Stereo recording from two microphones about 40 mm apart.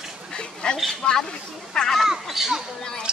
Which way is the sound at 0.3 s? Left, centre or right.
Centre.